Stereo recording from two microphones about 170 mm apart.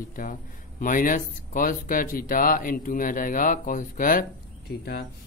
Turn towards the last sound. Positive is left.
turn(degrees=65)  # may be behind; listen again after turning